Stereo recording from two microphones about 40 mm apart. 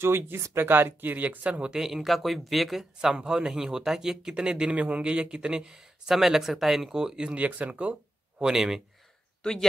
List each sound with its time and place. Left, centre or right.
0.0 s speech: right
1.8 s speech: centre
3.0 s speech: centre
4.7 s speech: right
5.0 s speech: right
5.8 s speech: centre
7.3 s speech: right; by 8.8 s centre
9.4 s speech: centre